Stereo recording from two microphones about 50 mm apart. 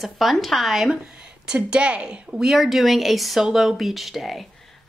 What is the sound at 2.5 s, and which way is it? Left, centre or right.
A woman's voice, centre.